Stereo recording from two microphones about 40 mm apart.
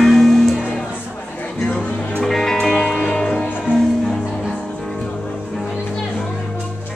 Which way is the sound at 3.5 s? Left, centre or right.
Left.